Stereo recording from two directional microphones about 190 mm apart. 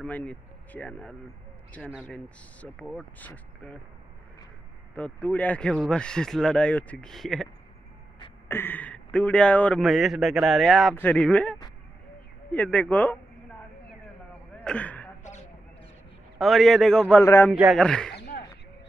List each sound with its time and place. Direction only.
0.0 s speech: 5° left (ahead or behind)
4.9 s speech: 5° left (ahead or behind)
8.5 s speech: 10° left (ahead or behind)
14.6 s a sound: 5° left (ahead or behind)
16.3 s speech: centre (ahead or behind)
17.2 s speech: 15° left (ahead or behind)
17.5 s speech: centre (ahead or behind)